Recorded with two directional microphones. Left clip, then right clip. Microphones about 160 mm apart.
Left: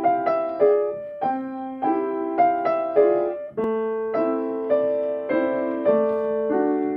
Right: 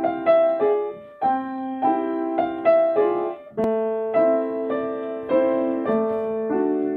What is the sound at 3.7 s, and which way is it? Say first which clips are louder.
Piano: right 2 dB; 30° right (ahead or behind).